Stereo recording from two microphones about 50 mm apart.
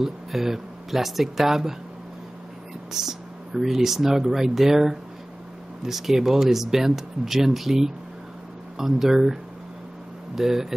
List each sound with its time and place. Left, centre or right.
0.0 s speech: centre
2.9 s speech: centre